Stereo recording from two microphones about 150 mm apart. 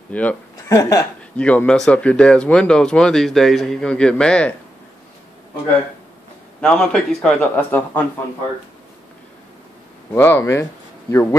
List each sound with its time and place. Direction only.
0.1 s speech: 10° left (ahead or behind)
1.3 s speech: 10° left (ahead or behind)
6.6 s speech: 5° left (ahead or behind)
10.1 s speech: 15° left (ahead or behind)